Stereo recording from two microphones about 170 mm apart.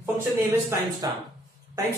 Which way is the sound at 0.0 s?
15° right (ahead or behind).